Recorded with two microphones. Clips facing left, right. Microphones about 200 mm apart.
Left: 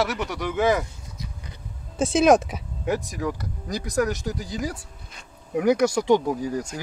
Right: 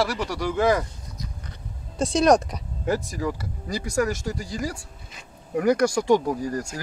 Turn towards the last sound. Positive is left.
turn(degrees=0)  # may be behind; listen again after turning